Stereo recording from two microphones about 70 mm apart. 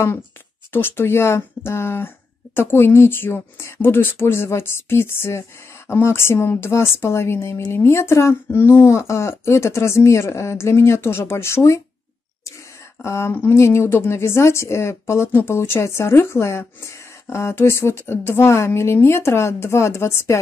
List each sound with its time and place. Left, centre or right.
0.7 s speech: left
13.0 s speech: left